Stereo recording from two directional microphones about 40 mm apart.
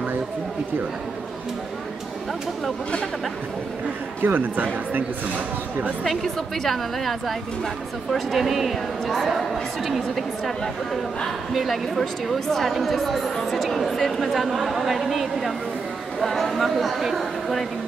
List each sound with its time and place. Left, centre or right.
4.2 s speech: right
6.0 s a woman's voice: centre
9.0 s speech: centre
9.4 s a woman's voice: centre
11.5 s a woman's voice: centre